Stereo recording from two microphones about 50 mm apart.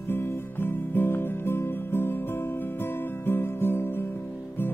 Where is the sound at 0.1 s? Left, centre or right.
Left.